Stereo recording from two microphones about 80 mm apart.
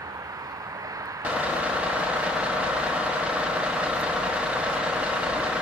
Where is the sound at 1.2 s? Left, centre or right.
Centre.